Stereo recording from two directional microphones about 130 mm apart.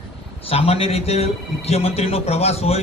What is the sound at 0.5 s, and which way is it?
A man's voice, 50° left (ahead or behind).